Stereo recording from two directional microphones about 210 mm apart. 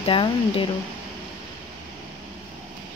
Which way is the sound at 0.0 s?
25° left (ahead or behind).